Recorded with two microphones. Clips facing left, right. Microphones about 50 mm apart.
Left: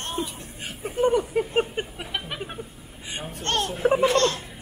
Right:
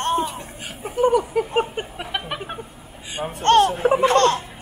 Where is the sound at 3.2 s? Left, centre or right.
Right.